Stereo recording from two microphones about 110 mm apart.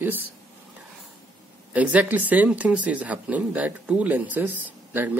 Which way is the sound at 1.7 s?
10° right (ahead or behind).